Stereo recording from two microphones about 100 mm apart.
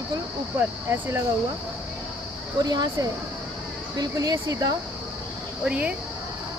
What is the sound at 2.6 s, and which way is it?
Speech, 45° right (ahead or behind).